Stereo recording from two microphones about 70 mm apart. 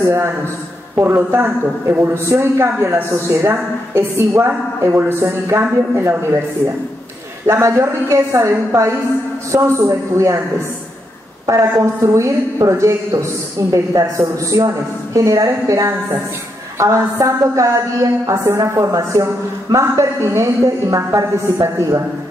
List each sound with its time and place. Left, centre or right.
0.0 s a woman's voice: right
7.4 s a woman's voice: right
11.4 s a woman's voice: right